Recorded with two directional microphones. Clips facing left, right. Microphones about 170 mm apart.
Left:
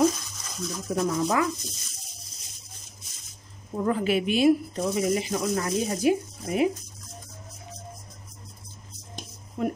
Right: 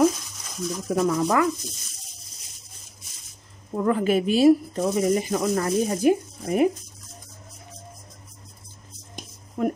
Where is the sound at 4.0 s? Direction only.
40° right (ahead or behind).